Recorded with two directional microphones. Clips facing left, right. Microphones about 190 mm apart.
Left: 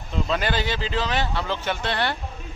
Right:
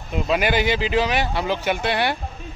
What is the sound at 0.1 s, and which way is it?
A man's voice, 15° right (ahead or behind).